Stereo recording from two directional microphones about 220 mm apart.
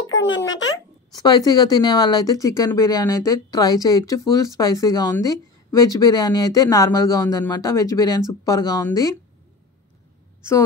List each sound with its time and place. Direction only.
0.1 s a sound: 55° left (ahead or behind)
0.5 s a child's voice: 60° left (ahead or behind)
1.1 s speech: 15° left (ahead or behind)